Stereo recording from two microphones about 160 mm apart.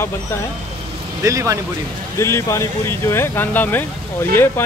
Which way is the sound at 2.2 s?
20° left (ahead or behind).